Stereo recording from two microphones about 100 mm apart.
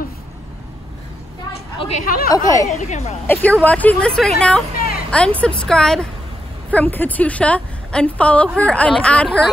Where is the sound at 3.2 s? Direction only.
15° left (ahead or behind).